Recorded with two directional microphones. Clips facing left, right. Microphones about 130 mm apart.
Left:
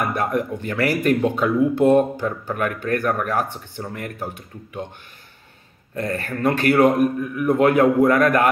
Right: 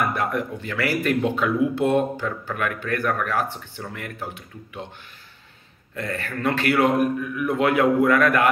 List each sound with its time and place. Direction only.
0.1 s a man's voice: 40° left (ahead or behind)
5.9 s a man's voice: 40° left (ahead or behind)